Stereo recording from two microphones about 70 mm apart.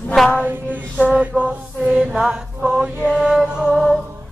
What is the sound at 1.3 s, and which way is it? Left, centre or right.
Mantra, centre.